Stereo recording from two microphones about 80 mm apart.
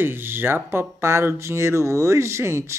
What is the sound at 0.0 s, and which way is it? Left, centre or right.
Speech, right.